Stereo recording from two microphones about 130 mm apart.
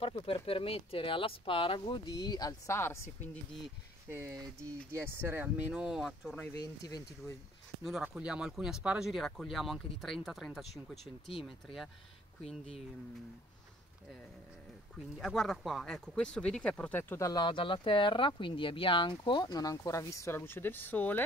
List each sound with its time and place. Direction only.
0.0 s speech: 45° left (ahead or behind); by 3.1 s 20° left (ahead or behind)
4.1 s speech: 25° right (ahead or behind); by 6.5 s 5° left (ahead or behind)
6.5 s speech: 30° left (ahead or behind)
7.8 s speech: 5° right (ahead or behind)
15.1 s speech: 5° left (ahead or behind)
17.2 s speech: 30° left (ahead or behind); by 21.2 s 15° left (ahead or behind)